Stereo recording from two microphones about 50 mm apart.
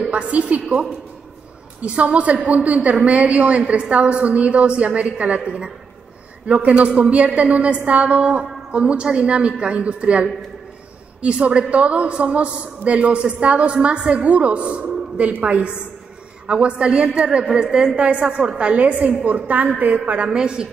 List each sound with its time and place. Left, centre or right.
0.1 s a woman's voice: right
20.2 s a woman's voice: centre